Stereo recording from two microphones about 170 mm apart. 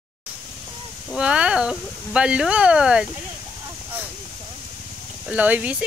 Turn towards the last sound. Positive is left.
turn(degrees=-10)  # may be behind; listen again after turning